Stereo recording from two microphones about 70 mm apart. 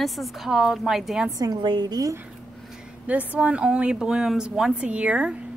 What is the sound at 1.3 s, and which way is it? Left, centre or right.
Speech, right.